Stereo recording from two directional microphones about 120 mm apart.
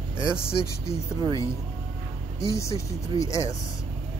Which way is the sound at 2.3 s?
25° left (ahead or behind).